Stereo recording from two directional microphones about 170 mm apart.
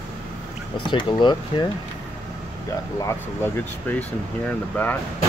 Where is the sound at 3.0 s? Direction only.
15° left (ahead or behind).